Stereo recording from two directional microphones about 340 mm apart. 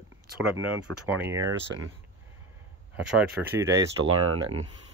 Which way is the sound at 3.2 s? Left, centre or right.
Centre.